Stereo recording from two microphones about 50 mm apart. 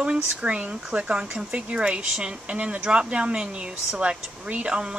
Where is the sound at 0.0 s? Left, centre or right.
Right.